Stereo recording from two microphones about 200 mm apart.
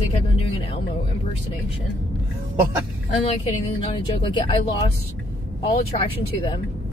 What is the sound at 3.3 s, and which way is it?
A woman's voice, 30° left (ahead or behind).